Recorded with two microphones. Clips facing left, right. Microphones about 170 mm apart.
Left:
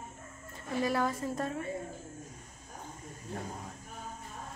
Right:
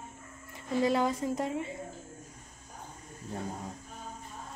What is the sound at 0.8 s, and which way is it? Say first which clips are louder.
Speech: right 3 dB; 20° right (ahead or behind).